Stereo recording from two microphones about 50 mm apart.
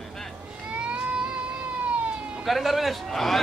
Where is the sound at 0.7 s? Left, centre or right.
Right.